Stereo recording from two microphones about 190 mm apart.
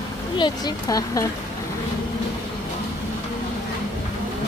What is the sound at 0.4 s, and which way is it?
Speech, 20° left (ahead or behind).